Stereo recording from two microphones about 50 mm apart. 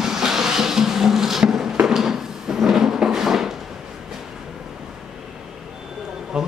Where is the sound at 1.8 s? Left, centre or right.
Centre.